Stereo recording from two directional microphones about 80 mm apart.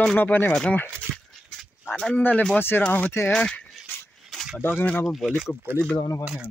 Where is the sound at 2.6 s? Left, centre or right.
Left.